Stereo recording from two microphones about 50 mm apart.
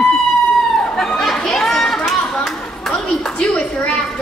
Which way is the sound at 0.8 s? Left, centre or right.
Centre.